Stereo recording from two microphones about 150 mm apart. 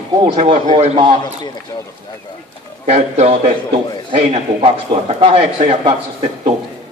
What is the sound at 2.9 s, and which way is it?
Speech, 50° right (ahead or behind).